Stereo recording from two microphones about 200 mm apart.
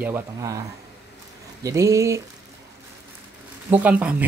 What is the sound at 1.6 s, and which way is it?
Speech, 15° right (ahead or behind).